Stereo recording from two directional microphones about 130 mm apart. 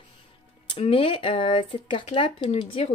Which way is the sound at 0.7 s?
50° left (ahead or behind).